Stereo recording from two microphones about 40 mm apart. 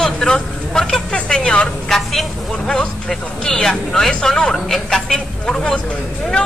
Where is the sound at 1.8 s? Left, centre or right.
Centre.